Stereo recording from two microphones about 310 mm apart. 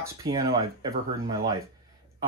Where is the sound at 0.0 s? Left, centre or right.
Centre.